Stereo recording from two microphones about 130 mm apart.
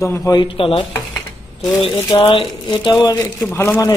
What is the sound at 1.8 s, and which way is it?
A man's voice, 45° left (ahead or behind).